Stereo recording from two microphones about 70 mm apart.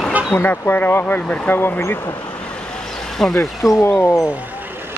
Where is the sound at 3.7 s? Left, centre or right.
Left.